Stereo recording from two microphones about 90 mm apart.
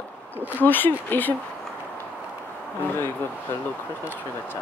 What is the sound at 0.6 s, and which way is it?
Speech, 20° left (ahead or behind).